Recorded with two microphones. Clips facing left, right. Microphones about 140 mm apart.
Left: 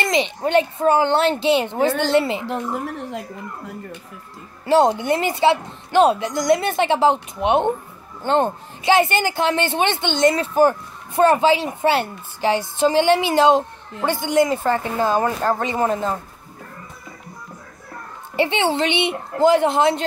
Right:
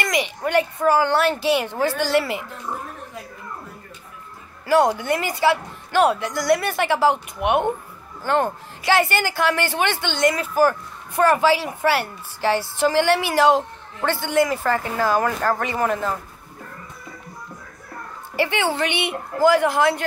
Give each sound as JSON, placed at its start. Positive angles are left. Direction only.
{"t": 0.0, "sound": "speech", "side_deg": 25}
{"t": 2.4, "sound": "speech", "side_deg": 75}
{"t": 4.6, "sound": "speech", "side_deg": 25}
{"t": 18.3, "sound": "speech", "side_deg": 20}